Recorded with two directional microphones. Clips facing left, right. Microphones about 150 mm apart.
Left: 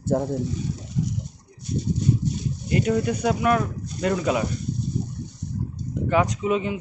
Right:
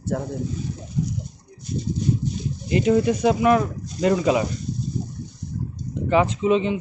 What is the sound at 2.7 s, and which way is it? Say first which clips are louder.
Speech: right 4 dB; 5° right (ahead or behind).